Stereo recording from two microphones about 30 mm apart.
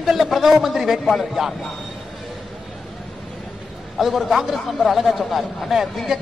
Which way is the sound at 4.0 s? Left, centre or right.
Centre.